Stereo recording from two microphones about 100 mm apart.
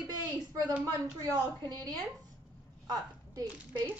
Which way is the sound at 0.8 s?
35° right (ahead or behind).